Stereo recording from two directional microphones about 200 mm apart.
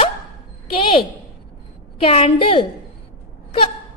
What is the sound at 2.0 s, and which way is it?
Speech, 30° left (ahead or behind).